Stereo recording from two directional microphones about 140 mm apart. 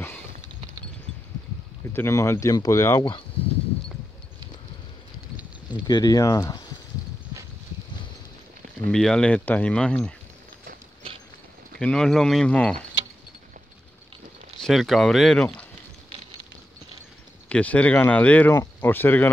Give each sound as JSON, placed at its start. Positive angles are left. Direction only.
{"t": 2.0, "sound": "speech", "side_deg": 20}
{"t": 5.9, "sound": "speech", "side_deg": 25}
{"t": 8.9, "sound": "speech", "side_deg": 5}
{"t": 11.8, "sound": "speech", "side_deg": 5}
{"t": 14.6, "sound": "speech", "side_deg": 0}
{"t": 17.5, "sound": "speech", "side_deg": 10}